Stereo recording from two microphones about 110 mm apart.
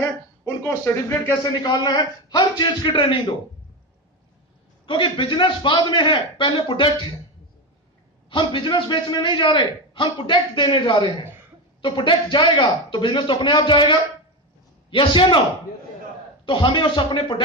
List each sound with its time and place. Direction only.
0.8 s speech: 20° left (ahead or behind)
1.4 s a man's voice: 40° left (ahead or behind)
4.8 s a man's voice: 50° left (ahead or behind)
8.3 s a man's voice: 45° left (ahead or behind)
16.4 s a man's voice: 50° left (ahead or behind)